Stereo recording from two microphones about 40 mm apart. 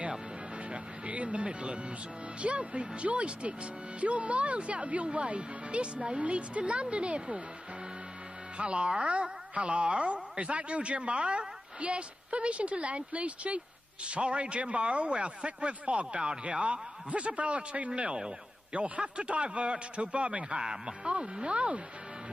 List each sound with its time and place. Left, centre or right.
0.7 s music: right
2.4 s a man's voice: right
8.5 s a man's voice: right